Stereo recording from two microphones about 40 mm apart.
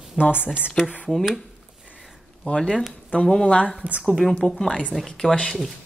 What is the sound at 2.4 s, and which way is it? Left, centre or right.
Speech, left.